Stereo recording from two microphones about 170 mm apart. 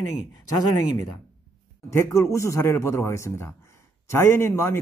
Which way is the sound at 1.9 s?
15° left (ahead or behind).